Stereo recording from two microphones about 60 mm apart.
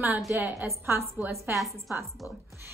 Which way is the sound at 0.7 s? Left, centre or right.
Right.